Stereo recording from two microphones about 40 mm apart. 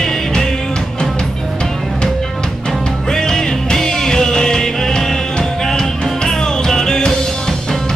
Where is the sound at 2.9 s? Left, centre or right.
Centre.